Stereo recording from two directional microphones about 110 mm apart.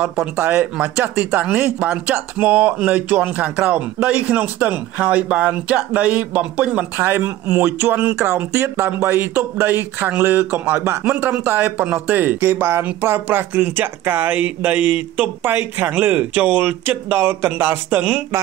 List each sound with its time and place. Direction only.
0.0 s speech: 10° right (ahead or behind)